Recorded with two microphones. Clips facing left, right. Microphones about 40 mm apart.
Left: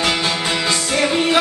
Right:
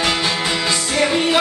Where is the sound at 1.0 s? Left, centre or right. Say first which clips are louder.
Right 1 dB; centre.